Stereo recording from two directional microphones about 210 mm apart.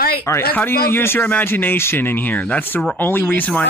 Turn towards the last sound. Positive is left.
turn(degrees=10)  # may be behind; listen again after turning